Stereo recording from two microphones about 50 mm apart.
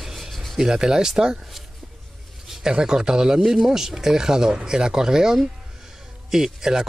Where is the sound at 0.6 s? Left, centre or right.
Centre.